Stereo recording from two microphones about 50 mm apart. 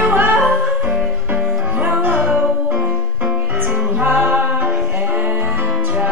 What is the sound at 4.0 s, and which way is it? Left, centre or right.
Music, right.